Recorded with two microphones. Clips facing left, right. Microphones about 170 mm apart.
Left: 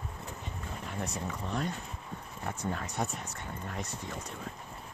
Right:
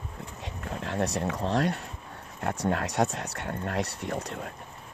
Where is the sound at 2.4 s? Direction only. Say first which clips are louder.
Right 8 dB; 75° right (ahead or behind).